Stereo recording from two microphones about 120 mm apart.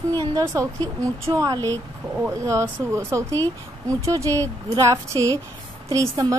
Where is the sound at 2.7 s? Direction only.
25° right (ahead or behind).